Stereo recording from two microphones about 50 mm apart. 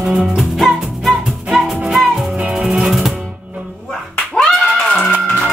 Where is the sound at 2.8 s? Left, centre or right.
Centre.